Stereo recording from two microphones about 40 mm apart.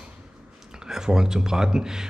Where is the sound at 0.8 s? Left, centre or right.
Centre.